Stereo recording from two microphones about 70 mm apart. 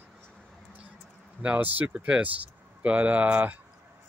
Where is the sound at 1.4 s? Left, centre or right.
Right.